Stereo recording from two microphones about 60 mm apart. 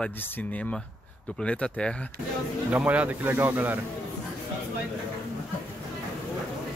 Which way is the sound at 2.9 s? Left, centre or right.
Right.